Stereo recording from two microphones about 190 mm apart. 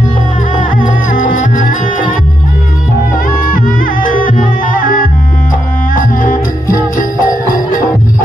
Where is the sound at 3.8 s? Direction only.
45° left (ahead or behind).